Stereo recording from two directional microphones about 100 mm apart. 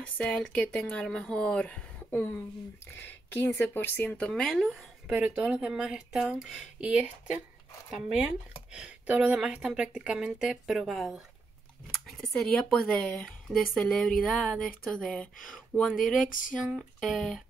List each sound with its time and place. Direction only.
0.2 s a woman's voice: 10° left (ahead or behind)
5.0 s a woman's voice: 15° right (ahead or behind); by 15.9 s 10° left (ahead or behind)
16.6 s a sound: 5° right (ahead or behind)